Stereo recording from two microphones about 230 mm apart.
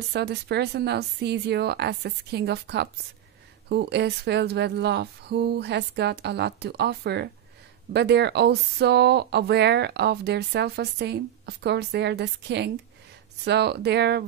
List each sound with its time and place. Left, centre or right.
0.1 s speech: right